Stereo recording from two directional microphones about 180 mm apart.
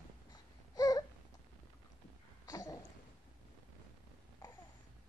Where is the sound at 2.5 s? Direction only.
20° left (ahead or behind).